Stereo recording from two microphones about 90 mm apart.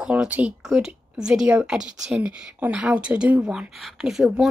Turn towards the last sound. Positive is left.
turn(degrees=-5)  # may be behind; listen again after turning